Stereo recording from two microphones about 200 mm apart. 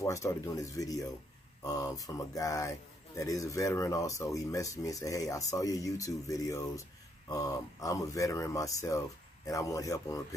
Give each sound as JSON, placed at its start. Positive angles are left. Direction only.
{"t": 0.0, "sound": "speech", "side_deg": 15}